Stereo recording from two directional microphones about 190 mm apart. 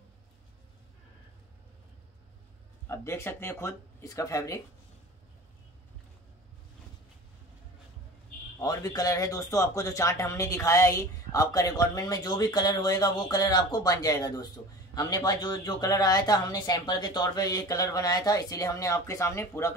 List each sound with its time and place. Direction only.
2.9 s speech: 15° left (ahead or behind)
8.5 s speech: 20° left (ahead or behind)